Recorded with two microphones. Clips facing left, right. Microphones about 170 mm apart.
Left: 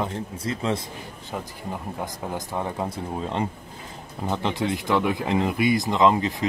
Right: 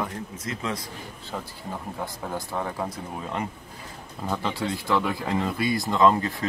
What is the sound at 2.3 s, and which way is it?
Speech, 20° left (ahead or behind).